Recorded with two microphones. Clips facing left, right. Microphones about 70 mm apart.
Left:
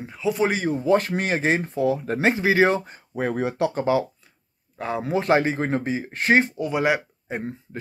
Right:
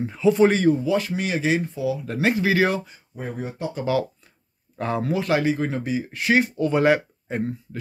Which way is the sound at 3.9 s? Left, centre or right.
Left.